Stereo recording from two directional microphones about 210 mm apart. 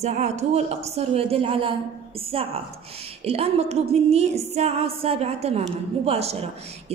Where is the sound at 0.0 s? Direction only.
30° right (ahead or behind).